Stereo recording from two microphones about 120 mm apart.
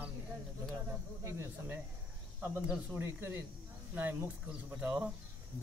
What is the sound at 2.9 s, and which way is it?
A man's voice, 20° right (ahead or behind).